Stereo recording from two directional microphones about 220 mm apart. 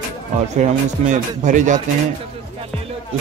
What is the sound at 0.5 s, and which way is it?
Speech, 35° right (ahead or behind).